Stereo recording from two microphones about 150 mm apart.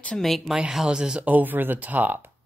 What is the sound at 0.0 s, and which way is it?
Speech, 5° left (ahead or behind).